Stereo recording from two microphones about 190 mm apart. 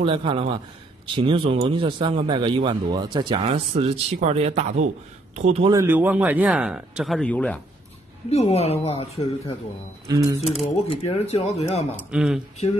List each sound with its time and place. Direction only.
0.0 s a man's voice: 30° right (ahead or behind)
5.7 s speech: 15° right (ahead or behind); by 7.6 s 5° left (ahead or behind)
8.3 s speech: 35° left (ahead or behind)
10.1 s a man's voice: 20° right (ahead or behind)
10.9 s speech: 35° left (ahead or behind)
12.0 s speech: 5° right (ahead or behind)